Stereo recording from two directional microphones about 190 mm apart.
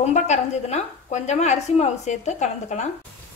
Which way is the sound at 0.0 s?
35° left (ahead or behind).